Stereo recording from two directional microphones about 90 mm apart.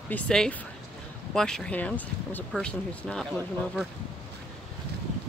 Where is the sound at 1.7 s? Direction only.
20° left (ahead or behind).